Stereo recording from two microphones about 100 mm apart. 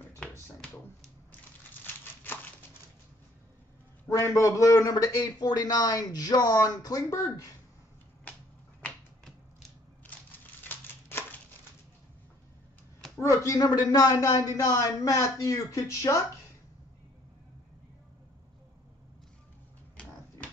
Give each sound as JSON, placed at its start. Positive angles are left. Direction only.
{"t": 4.1, "sound": "a man's voice", "side_deg": 30}
{"t": 8.8, "sound": "finger snapping", "side_deg": 5}
{"t": 10.6, "sound": "a sound", "side_deg": 20}
{"t": 13.2, "sound": "a man's voice", "side_deg": 30}